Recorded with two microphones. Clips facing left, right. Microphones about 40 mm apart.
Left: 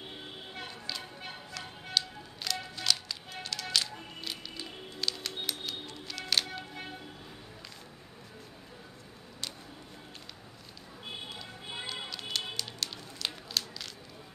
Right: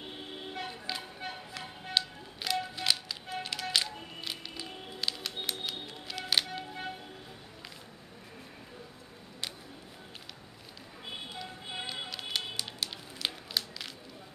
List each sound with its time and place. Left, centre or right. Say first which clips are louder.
0.6 s music: right 2 dB; right
11.8 s run: even; centre